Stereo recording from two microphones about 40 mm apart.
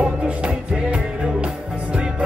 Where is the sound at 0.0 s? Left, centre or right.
Right.